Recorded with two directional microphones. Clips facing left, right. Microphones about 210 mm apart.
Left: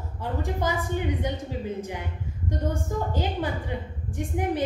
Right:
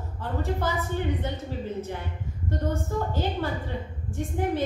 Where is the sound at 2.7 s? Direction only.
15° left (ahead or behind).